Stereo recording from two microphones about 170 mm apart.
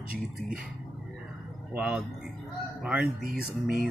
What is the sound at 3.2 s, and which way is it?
Speech, 65° right (ahead or behind).